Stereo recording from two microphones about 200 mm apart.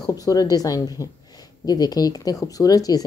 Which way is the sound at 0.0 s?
20° left (ahead or behind).